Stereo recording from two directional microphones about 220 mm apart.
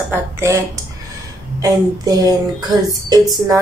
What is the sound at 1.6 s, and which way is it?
A woman's voice, 15° right (ahead or behind).